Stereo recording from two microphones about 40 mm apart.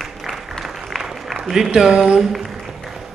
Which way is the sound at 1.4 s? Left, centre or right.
Centre.